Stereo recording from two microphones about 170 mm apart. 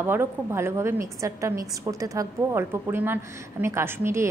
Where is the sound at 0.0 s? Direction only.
15° right (ahead or behind).